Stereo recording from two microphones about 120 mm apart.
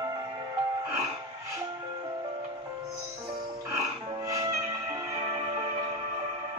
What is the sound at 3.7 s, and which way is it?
Music, 30° right (ahead or behind).